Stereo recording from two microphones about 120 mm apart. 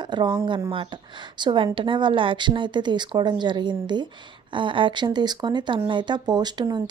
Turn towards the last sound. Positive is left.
turn(degrees=-35)  # may be behind; listen again after turning